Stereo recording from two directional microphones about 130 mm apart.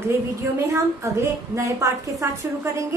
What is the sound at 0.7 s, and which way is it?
A woman's voice, 25° right (ahead or behind).